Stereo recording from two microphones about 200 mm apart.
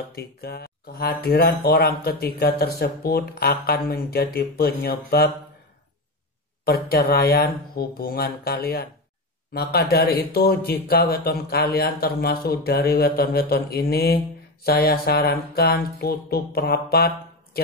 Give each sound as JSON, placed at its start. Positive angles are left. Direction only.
{"t": 0.1, "sound": "speech", "side_deg": 50}
{"t": 6.6, "sound": "speech", "side_deg": 50}